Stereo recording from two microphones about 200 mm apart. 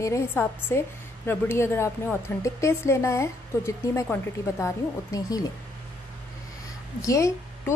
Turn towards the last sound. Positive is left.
turn(degrees=15)  # may be behind; listen again after turning